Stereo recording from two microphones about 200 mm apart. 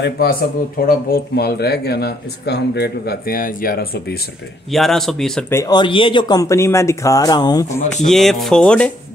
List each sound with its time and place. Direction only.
0.0 s speech: 50° left (ahead or behind)
4.6 s speech: centre (ahead or behind)
5.5 s speech: 15° left (ahead or behind)
8.1 s speech: centre (ahead or behind)